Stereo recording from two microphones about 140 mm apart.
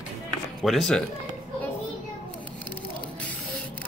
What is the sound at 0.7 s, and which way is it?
Speech, centre (ahead or behind).